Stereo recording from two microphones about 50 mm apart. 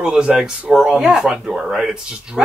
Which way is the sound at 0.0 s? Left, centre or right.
Centre.